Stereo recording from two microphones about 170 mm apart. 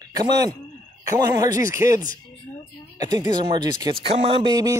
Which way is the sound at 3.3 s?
25° right (ahead or behind).